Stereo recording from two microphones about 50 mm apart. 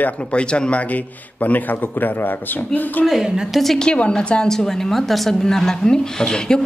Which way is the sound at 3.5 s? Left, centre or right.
Centre.